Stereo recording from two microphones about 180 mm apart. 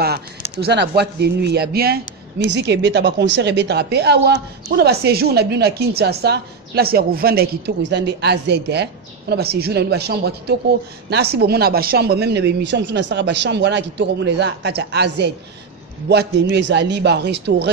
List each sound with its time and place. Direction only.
0.0 s speech: 60° right (ahead or behind)